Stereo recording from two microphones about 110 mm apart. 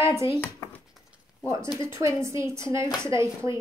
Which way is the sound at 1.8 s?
25° right (ahead or behind).